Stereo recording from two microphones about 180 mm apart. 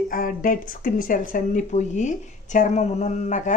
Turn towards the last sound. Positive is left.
turn(degrees=40)  # may be behind; listen again after turning